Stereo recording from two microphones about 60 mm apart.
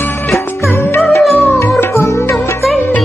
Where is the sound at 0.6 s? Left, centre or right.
Left.